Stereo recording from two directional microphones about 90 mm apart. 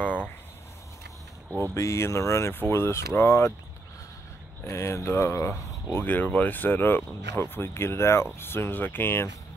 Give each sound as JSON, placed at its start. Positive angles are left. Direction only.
{"t": 0.0, "sound": "a sound", "side_deg": 20}
{"t": 1.7, "sound": "speech", "side_deg": 30}
{"t": 2.5, "sound": "speech", "side_deg": 25}
{"t": 4.6, "sound": "speech", "side_deg": 30}